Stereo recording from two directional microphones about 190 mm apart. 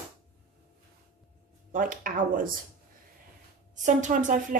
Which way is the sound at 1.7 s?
45° right (ahead or behind).